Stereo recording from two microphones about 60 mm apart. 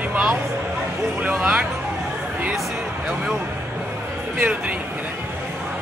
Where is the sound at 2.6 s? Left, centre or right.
Centre.